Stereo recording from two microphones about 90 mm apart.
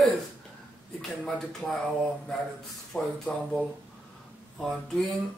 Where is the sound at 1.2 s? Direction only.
5° left (ahead or behind).